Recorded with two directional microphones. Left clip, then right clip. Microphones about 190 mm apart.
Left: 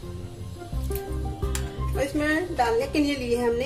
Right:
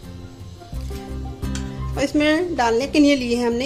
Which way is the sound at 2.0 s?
50° right (ahead or behind).